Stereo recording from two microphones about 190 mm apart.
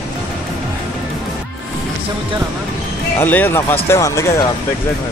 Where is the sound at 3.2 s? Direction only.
10° left (ahead or behind).